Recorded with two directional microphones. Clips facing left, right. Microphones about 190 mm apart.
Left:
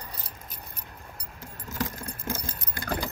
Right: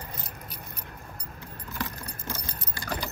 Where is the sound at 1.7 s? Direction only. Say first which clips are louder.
Left 3 dB; 45° left (ahead or behind).